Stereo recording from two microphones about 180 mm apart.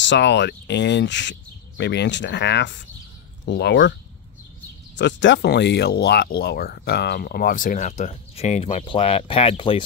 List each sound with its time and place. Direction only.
0.0 s speech: 85° left
4.9 s speech: 85° left; by 9.8 s 30° left (ahead or behind)